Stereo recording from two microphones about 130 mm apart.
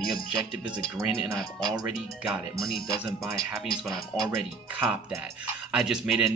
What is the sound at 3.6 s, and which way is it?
Speech, 5° left (ahead or behind).